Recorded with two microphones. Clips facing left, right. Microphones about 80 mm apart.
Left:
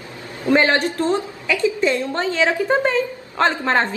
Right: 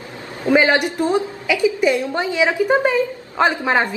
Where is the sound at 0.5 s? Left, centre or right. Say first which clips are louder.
Right 1 dB; centre.